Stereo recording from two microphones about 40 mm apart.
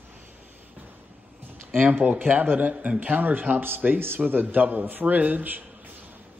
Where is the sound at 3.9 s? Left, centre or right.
Right.